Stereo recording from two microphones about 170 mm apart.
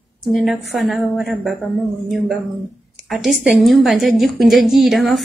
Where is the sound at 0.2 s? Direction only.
Centre (ahead or behind).